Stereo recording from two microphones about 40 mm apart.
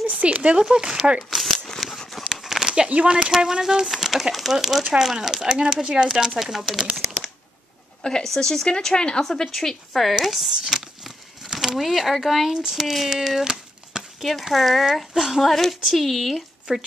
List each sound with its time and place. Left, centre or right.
0.0 s speech: right
0.6 s speech: centre
1.3 s shuffling cards: centre
1.8 s a sound: centre
2.9 s speech: right
3.3 s speech: centre
8.2 s speech: centre
8.9 s speech: left
9.2 s speech: centre
13.4 s a sound: centre
14.2 s speech: centre
15.9 s speech: centre
16.7 s speech: centre